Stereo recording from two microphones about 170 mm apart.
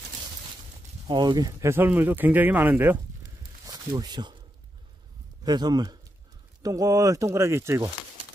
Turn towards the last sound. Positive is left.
turn(degrees=-15)  # may be behind; listen again after turning